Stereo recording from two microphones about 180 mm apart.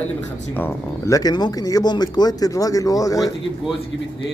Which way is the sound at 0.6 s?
15° left (ahead or behind).